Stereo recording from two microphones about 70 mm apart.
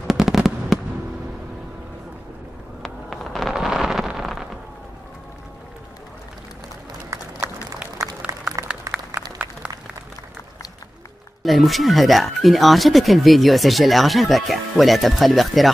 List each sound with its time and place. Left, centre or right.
0.0 s fireworks: centre
2.8 s vehicle: centre
7.1 s run: right
8.5 s applause: centre
8.9 s applause: right
11.4 s speech: centre